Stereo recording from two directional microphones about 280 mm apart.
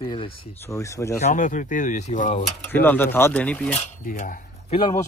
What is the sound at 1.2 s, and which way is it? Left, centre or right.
Speech, left.